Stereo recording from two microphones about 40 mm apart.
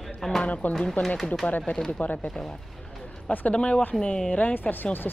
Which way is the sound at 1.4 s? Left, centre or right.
Left.